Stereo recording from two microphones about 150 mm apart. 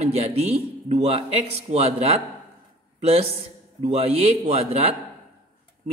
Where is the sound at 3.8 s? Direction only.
45° right (ahead or behind).